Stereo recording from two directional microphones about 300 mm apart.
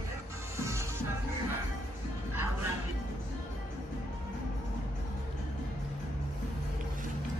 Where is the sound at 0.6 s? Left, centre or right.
Centre.